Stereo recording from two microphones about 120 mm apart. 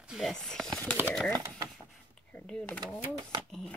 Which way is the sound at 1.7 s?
10° left (ahead or behind).